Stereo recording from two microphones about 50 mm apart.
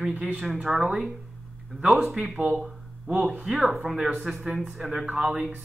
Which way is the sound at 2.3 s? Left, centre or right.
Right.